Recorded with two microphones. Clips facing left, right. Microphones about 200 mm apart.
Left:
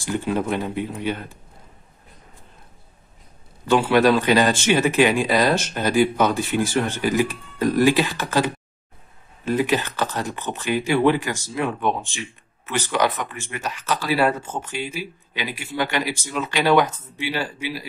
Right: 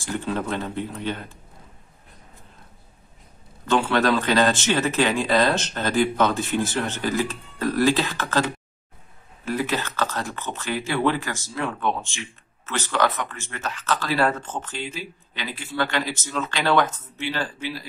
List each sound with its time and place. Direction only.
0.0 s speech: 15° left (ahead or behind)
3.6 s speech: 10° left (ahead or behind)